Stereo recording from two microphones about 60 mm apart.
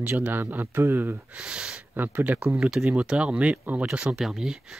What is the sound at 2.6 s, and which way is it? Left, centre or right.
Speech, centre.